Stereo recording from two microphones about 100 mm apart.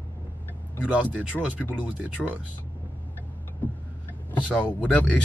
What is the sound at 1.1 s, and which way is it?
Speech, 15° left (ahead or behind).